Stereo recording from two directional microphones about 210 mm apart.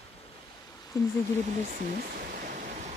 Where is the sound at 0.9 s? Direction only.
15° left (ahead or behind).